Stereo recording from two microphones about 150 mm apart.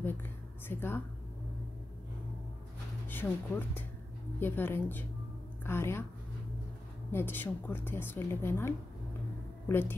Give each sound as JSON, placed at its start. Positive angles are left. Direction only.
{"t": 0.7, "sound": "a woman's voice", "side_deg": 15}
{"t": 3.1, "sound": "a woman's voice", "side_deg": 10}
{"t": 7.1, "sound": "a woman's voice", "side_deg": 15}